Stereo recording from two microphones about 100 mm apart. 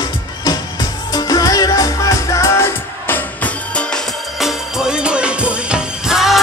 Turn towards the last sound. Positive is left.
turn(degrees=-5)  # may be behind; listen again after turning